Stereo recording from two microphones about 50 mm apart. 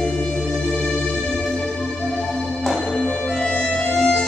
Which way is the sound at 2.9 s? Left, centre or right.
Centre.